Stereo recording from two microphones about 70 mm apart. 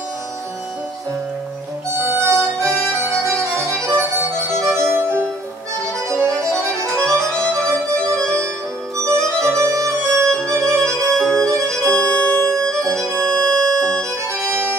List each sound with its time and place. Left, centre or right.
2.0 s harmonica: right
3.3 s music: right
5.9 s music: centre
6.8 s music: right
11.1 s violin: centre
11.4 s music: right
12.1 s music: centre
14.3 s music: right